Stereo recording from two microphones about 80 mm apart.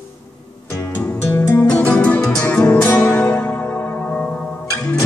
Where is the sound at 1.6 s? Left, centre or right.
Centre.